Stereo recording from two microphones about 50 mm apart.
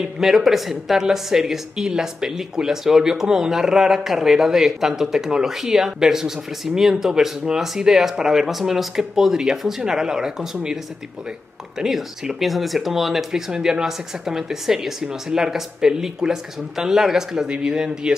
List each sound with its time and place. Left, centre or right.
0.0 s speech: centre
11.8 s speech: centre